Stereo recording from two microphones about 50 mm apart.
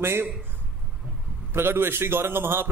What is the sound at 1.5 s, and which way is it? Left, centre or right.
A man's voice, right.